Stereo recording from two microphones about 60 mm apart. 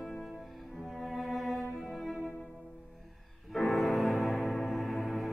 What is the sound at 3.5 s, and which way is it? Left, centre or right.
Music, centre.